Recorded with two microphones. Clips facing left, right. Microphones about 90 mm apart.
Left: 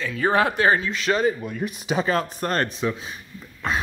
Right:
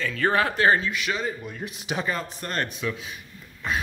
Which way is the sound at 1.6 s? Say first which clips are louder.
Left 8 dB; 65° left (ahead or behind).